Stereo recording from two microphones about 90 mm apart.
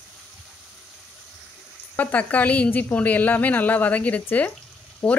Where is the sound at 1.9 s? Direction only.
15° left (ahead or behind).